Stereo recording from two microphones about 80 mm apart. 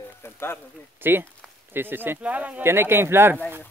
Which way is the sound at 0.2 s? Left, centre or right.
Left.